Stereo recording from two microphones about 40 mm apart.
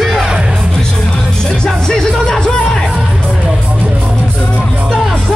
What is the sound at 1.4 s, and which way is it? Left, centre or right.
Music, centre.